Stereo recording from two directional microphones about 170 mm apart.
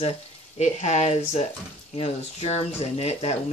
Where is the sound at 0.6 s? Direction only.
40° left (ahead or behind).